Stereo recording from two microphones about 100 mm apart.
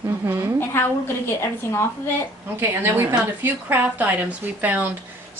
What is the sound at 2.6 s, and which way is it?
A woman's voice, 25° right (ahead or behind).